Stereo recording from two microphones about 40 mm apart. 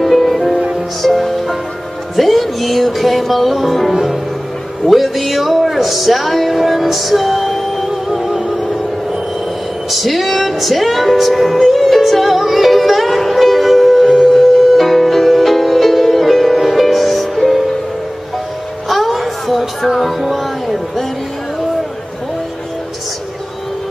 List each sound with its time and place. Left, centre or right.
0.0 s music: centre
4.8 s speech: centre
9.8 s music: centre
18.9 s music: centre